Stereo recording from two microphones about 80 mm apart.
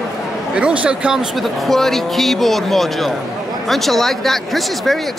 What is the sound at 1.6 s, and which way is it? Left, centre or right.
Speech, centre.